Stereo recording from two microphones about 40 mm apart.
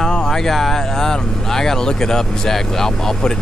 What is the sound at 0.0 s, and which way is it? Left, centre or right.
Speech, centre.